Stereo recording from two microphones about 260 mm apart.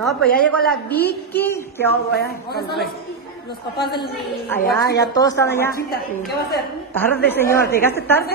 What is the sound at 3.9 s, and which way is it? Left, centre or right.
Speech, centre.